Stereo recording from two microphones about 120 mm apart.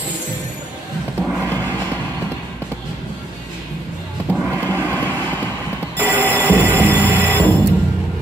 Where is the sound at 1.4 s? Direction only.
15° left (ahead or behind).